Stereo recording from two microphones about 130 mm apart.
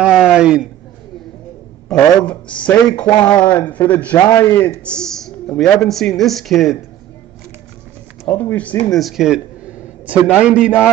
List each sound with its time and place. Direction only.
0.0 s a man's voice: 5° right (ahead or behind)
1.9 s speech: 10° left (ahead or behind)
3.2 s speech: 35° left (ahead or behind)
3.7 s speech: 10° left (ahead or behind)
4.2 s a man's voice: 30° left (ahead or behind)
4.6 s speech: 10° left (ahead or behind)
8.3 s speech: 15° left (ahead or behind)
8.9 s a man's voice: centre (ahead or behind)